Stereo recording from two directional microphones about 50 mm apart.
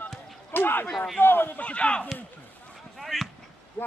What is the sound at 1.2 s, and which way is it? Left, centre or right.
Speech, left.